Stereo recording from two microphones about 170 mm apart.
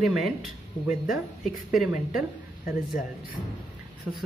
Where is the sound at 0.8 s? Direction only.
25° left (ahead or behind).